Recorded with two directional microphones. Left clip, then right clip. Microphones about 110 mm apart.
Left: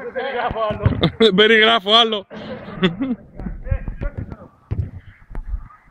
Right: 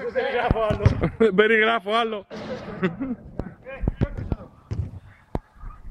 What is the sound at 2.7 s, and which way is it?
Speech, 20° left (ahead or behind).